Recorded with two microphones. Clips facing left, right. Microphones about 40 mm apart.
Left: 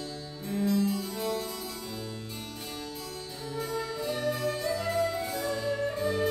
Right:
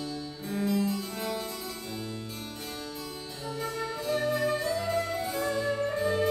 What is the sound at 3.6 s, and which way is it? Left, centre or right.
Music, centre.